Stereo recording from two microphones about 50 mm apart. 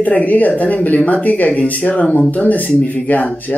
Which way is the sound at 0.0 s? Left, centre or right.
Left.